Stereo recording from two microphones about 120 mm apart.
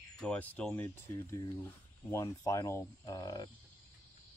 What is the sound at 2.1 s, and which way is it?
Speech, 25° left (ahead or behind).